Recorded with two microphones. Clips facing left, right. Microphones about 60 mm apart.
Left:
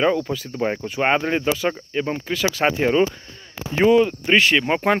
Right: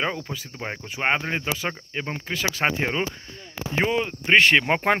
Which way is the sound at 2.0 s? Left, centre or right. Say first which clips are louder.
Left 6 dB; centre.